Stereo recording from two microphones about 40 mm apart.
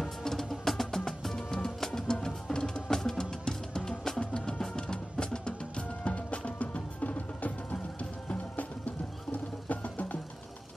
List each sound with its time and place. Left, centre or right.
0.0 s music: centre; by 8.6 s left
9.3 s music: left